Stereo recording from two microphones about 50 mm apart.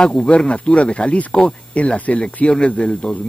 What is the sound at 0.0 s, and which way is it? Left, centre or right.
Speech, centre.